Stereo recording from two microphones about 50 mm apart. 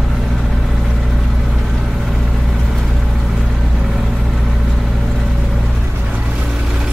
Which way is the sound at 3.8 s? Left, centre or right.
Centre.